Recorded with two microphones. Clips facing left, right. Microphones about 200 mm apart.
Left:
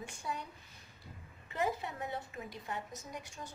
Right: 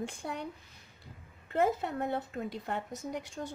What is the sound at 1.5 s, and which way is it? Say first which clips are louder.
A woman's voice: right 7 dB; 55° right (ahead or behind).